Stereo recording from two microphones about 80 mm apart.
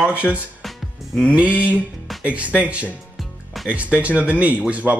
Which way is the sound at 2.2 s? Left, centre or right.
Centre.